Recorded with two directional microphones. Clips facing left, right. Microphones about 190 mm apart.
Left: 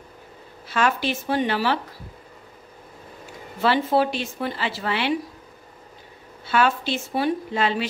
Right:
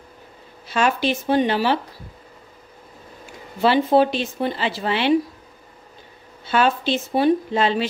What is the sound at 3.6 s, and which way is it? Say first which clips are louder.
Speech: right 4 dB; 20° right (ahead or behind).